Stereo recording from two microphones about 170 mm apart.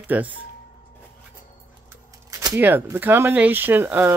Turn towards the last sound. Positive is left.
turn(degrees=-10)  # may be behind; listen again after turning